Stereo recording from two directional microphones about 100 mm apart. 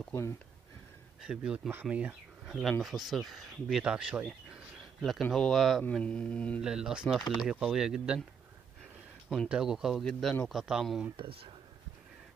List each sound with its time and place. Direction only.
1.2 s speech: 5° right (ahead or behind)
5.9 s speech: 10° left (ahead or behind)
6.6 s speech: 5° right (ahead or behind)
9.5 s speech: 5° right (ahead or behind)
11.1 s speech: 60° right (ahead or behind)